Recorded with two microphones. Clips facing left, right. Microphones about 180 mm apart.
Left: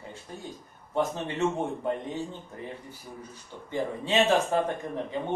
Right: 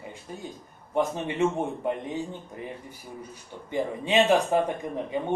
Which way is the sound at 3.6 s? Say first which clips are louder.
Right 2 dB; 15° right (ahead or behind).